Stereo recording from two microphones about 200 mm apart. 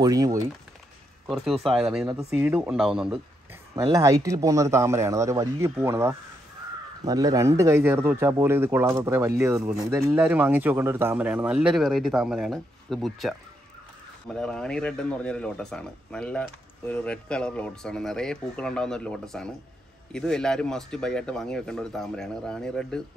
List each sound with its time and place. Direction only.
0.0 s a man's voice: 20° right (ahead or behind)
1.2 s speech: centre (ahead or behind)
3.7 s a man's voice: 20° right (ahead or behind); by 23.0 s 5° left (ahead or behind)